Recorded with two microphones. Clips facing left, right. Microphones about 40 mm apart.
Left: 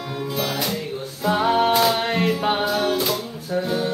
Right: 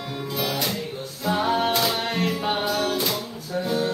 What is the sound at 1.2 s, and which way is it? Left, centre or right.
Music, centre.